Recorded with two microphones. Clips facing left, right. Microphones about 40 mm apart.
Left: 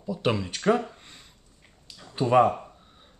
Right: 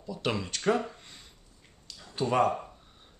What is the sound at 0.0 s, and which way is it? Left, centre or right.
Speech, centre.